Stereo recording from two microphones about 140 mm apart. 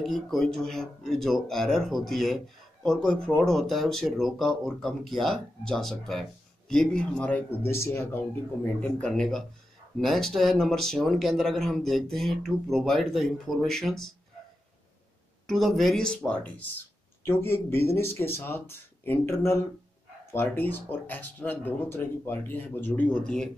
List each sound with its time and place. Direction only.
0.0 s speech: centre (ahead or behind); by 8.2 s 20° left (ahead or behind)
8.8 s speech: 5° left (ahead or behind)
15.4 s speech: centre (ahead or behind)